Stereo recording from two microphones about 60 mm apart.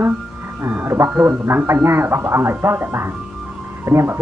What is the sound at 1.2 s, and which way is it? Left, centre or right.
Speech, right.